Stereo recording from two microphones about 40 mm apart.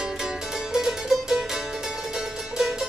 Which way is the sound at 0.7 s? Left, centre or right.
Centre.